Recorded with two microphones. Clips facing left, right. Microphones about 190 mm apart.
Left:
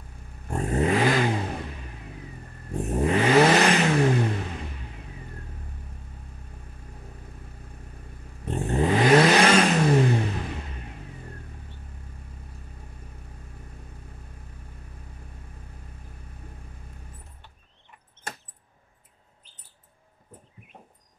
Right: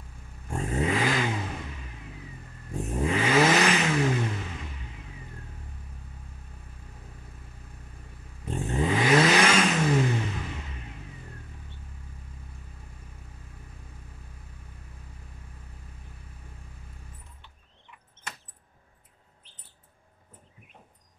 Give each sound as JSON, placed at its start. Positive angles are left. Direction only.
{"t": 0.5, "sound": "vehicle", "side_deg": 35}
{"t": 2.9, "sound": "vehicle", "side_deg": 35}
{"t": 8.5, "sound": "vehicle", "side_deg": 35}